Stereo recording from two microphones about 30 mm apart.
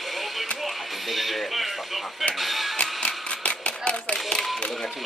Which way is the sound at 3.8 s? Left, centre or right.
Left.